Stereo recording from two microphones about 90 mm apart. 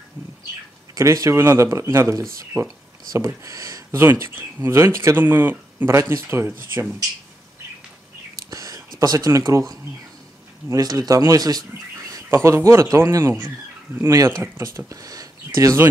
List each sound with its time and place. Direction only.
0.9 s speech: 35° right (ahead or behind)
8.5 s a sound: 40° right (ahead or behind)
9.5 s speech: 35° right (ahead or behind)
10.7 s speech: 45° right (ahead or behind)